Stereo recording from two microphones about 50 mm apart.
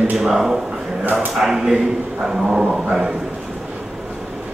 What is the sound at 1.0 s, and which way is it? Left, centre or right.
Speech, right.